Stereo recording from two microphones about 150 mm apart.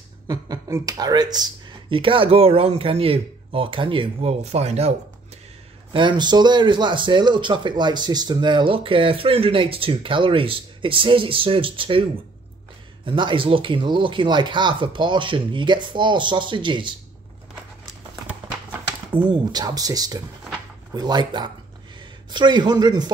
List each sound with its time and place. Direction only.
0.3 s speech: 20° right (ahead or behind); by 4.9 s 45° right (ahead or behind)
5.9 s speech: 30° right (ahead or behind)
19.1 s speech: 30° right (ahead or behind)